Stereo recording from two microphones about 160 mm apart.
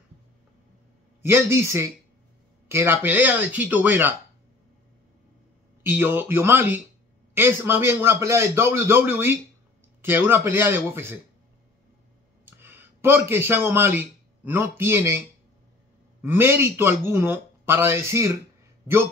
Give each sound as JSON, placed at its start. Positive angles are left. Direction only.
{"t": 1.2, "sound": "a man's voice", "side_deg": -15}
{"t": 5.9, "sound": "a man's voice", "side_deg": -15}
{"t": 12.4, "sound": "a man's voice", "side_deg": -15}